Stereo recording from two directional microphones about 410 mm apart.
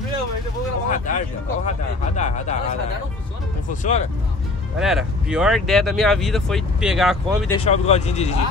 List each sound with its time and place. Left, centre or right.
0.8 s speech: centre
3.8 s speech: centre
4.7 s speech: centre
7.6 s speech: centre